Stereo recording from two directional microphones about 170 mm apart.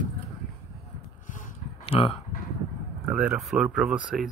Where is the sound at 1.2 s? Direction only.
50° left (ahead or behind).